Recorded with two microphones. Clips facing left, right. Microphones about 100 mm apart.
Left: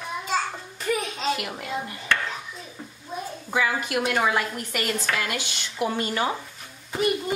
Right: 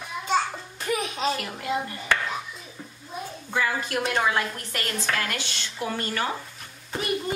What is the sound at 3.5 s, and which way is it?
A woman's voice, 15° left (ahead or behind).